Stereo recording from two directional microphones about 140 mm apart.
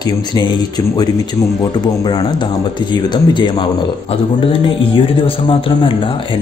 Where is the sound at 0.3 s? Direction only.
30° left (ahead or behind).